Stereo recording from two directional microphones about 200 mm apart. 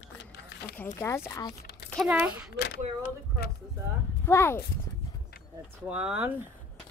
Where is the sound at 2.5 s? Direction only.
55° left (ahead or behind).